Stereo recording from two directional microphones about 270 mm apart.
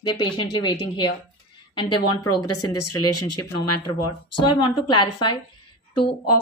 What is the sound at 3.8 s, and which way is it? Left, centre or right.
A woman's voice, centre.